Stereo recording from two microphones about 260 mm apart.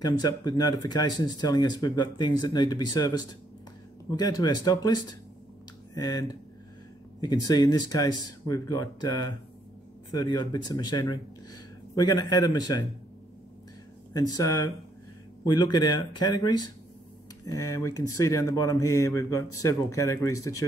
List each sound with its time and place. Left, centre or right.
0.0 s speech: centre
4.2 s speech: centre
14.1 s speech: centre